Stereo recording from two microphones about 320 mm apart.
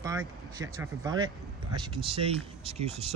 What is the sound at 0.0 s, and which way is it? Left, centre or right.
Speech, centre.